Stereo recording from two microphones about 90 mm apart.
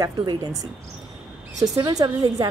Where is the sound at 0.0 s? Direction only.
50° right (ahead or behind).